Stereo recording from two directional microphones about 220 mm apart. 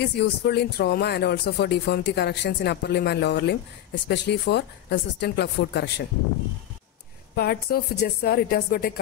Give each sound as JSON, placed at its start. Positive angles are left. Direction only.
{"t": 0.0, "sound": "speech", "side_deg": 50}
{"t": 7.3, "sound": "speech", "side_deg": 45}